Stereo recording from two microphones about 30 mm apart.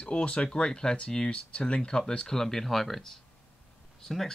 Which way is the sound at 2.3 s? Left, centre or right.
Centre.